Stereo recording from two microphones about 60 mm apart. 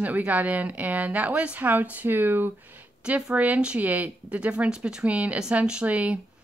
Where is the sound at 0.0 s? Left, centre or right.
Right.